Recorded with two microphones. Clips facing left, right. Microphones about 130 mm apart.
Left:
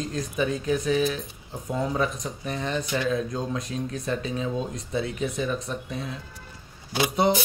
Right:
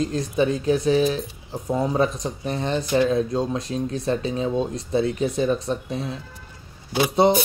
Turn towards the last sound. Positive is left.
turn(degrees=-30)  # may be behind; listen again after turning